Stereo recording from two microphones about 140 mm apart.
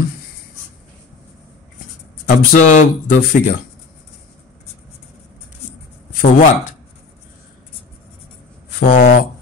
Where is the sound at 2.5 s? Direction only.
65° left (ahead or behind); by 3.6 s 85° left.